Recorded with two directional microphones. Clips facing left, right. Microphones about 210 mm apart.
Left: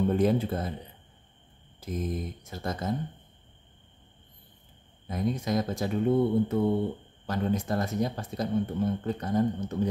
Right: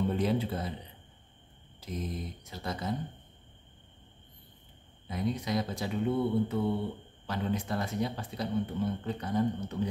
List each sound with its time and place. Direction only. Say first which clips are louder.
0.1 s speech: left 5 dB; 50° left (ahead or behind)
1.8 s speech: left 5 dB; 50° left (ahead or behind)
5.0 s speech: left 3 dB; 45° left (ahead or behind)